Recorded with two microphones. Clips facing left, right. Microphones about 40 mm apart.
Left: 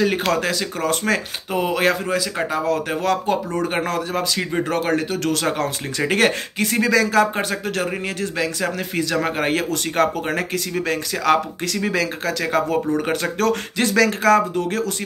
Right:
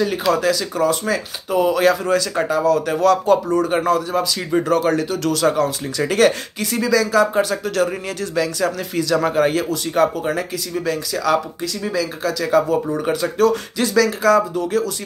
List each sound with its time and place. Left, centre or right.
0.1 s speech: left
1.5 s speech: left
2.0 s speech: centre
2.5 s speech: left
11.6 s speech: left
12.2 s speech: left